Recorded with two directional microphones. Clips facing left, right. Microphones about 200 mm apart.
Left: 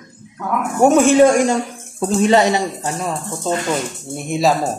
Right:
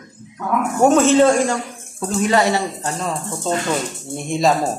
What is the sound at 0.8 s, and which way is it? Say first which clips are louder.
Speech: left 2 dB; 10° left (ahead or behind).